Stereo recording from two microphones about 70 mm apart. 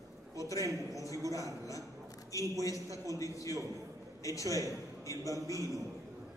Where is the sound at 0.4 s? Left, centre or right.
Left.